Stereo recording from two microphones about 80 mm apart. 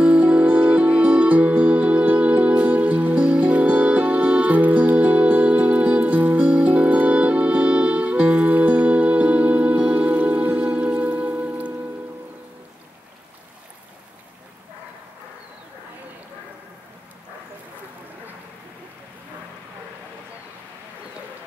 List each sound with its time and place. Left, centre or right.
0.0 s music: centre